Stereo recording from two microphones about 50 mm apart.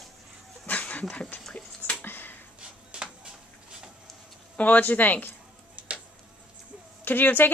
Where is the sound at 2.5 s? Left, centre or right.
Centre.